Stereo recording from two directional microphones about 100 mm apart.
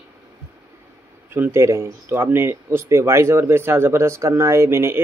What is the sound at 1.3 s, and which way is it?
Speech, 25° right (ahead or behind).